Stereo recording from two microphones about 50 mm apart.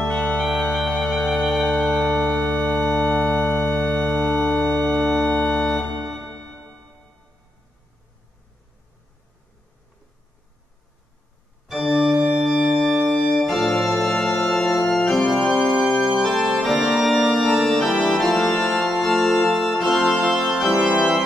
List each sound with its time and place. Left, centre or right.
0.7 s music: centre
2.4 s organ: centre
2.8 s organ: centre
12.1 s organ: centre
14.1 s music: centre
14.9 s organ: centre
16.0 s music: centre
16.8 s organ: centre
17.6 s organ: centre